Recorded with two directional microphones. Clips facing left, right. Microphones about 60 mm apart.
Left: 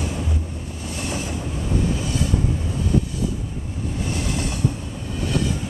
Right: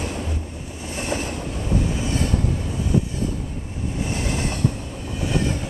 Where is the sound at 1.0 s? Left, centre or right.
Right.